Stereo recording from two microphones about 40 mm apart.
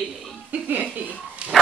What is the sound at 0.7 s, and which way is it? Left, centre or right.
Speech, right.